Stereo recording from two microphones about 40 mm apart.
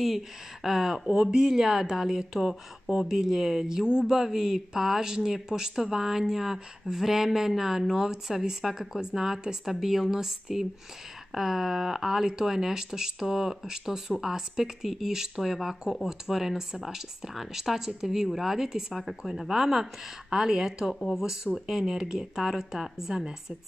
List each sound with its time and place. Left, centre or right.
0.7 s speech: centre
3.6 s speech: centre
18.9 s a woman's voice: centre